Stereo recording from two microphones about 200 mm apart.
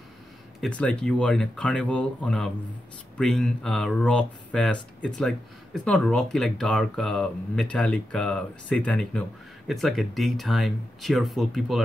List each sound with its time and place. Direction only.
0.6 s speech: 5° left (ahead or behind)